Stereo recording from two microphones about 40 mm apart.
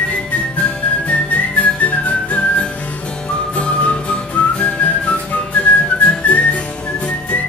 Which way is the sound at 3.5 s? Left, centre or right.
Left.